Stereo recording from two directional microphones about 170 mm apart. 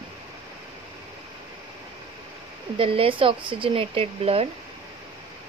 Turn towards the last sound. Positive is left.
turn(degrees=-35)  # may be behind; listen again after turning